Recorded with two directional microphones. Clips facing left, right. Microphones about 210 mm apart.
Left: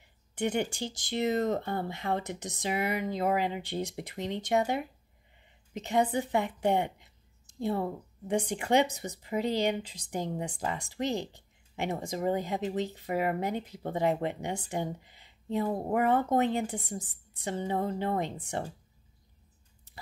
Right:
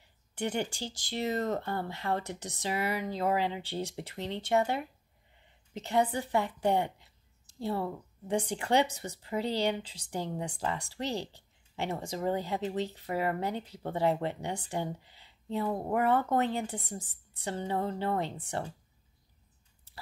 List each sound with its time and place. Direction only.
0.3 s speech: 15° left (ahead or behind)